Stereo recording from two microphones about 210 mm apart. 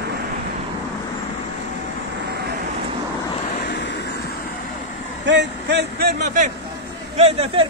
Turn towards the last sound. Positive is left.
turn(degrees=-30)  # may be behind; listen again after turning